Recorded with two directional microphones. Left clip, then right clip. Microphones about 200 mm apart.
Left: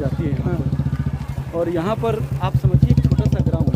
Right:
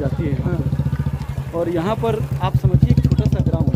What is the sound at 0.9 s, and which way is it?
Vehicle, 55° right (ahead or behind).